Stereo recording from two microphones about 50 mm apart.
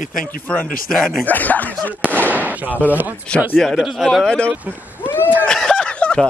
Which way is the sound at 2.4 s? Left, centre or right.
Right.